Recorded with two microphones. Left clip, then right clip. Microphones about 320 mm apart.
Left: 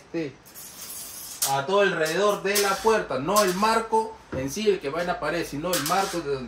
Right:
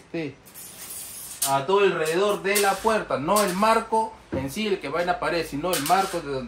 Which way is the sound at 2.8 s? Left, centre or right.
Right.